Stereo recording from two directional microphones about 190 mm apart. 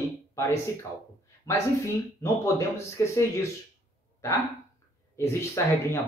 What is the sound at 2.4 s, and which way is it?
Speech, 15° left (ahead or behind).